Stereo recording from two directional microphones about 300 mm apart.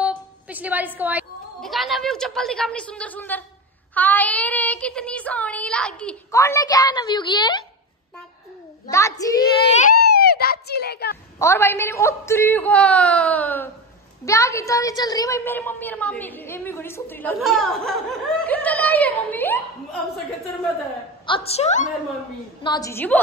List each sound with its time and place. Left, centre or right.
0.0 s a woman's voice: centre
3.9 s child singing: centre
8.9 s a woman's voice: centre
9.9 s a child's voice: left
11.3 s a woman's voice: centre
18.4 s child singing: centre
21.5 s a woman's voice: left